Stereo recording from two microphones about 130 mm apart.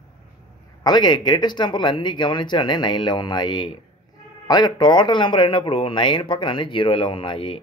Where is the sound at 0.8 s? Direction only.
35° left (ahead or behind).